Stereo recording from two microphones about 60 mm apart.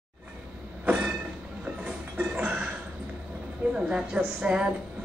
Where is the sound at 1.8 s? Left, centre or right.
Right.